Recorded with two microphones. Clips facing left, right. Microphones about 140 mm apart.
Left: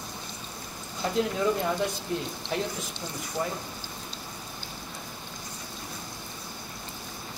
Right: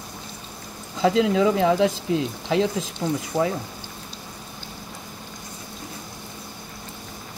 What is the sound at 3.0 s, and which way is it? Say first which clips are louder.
Speech: right 18 dB; 65° right (ahead or behind).